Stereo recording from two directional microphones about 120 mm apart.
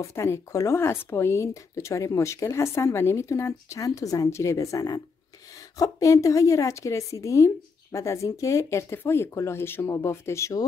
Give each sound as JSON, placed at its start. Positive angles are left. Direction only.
{"t": 0.0, "sound": "speech", "side_deg": 25}